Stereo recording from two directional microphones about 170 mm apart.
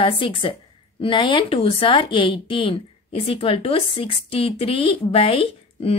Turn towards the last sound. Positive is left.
turn(degrees=35)  # may be behind; listen again after turning